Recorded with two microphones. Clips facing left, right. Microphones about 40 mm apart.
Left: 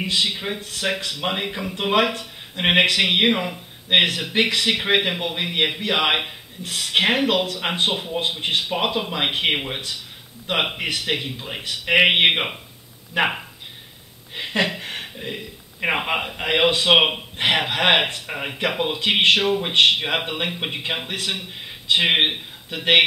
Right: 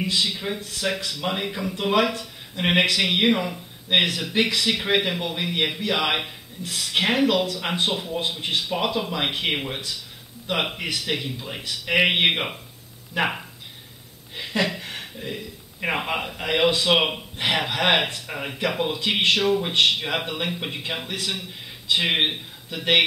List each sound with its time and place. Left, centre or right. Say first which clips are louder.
0.0 s speech: left 2 dB; left
0.6 s speech: left 2 dB; centre